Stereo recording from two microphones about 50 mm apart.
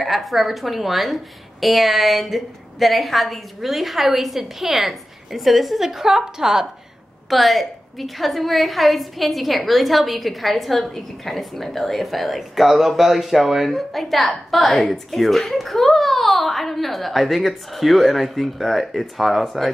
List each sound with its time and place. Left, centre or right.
0.0 s a woman's voice: centre